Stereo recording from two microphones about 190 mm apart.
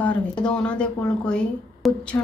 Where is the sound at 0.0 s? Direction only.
5° left (ahead or behind).